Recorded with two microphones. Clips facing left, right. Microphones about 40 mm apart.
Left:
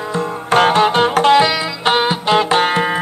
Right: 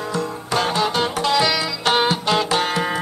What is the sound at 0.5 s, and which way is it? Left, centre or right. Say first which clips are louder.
Music: left 8 dB; left.